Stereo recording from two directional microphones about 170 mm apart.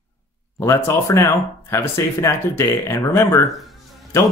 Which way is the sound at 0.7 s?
15° left (ahead or behind).